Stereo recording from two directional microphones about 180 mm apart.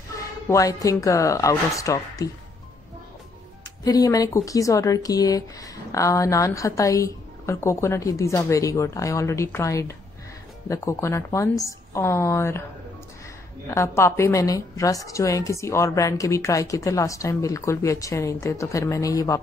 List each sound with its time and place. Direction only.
0.5 s speech: 20° left (ahead or behind)
3.8 s speech: 20° left (ahead or behind)
13.7 s speech: 15° left (ahead or behind)